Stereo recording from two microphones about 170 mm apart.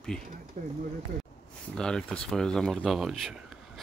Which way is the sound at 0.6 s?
45° right (ahead or behind).